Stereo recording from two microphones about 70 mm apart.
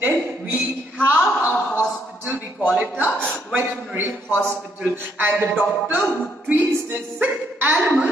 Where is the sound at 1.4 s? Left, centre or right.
Left.